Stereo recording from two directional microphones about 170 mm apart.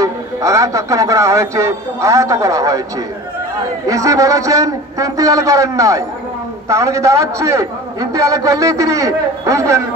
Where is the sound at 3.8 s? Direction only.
20° right (ahead or behind).